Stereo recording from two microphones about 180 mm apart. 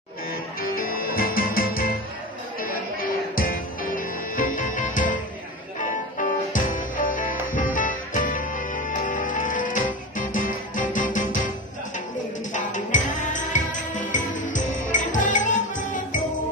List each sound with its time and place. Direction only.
0.6 s music: 55° left (ahead or behind)
3.3 s music: 50° left (ahead or behind)
12.5 s music: 45° left (ahead or behind)